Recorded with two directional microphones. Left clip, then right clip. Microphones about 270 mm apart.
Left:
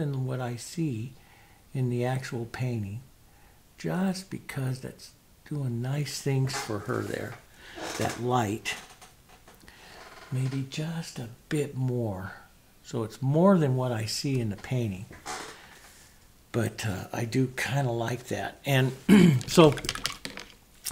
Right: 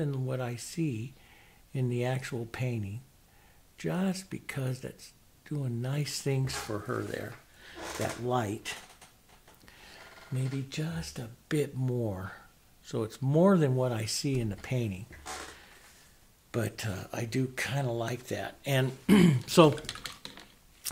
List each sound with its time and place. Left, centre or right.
0.0 s speech: right
9.7 s speech: right
16.5 s speech: right
20.8 s a sound: right